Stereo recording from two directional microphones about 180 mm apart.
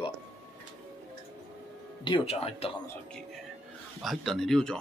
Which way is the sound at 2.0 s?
25° left (ahead or behind).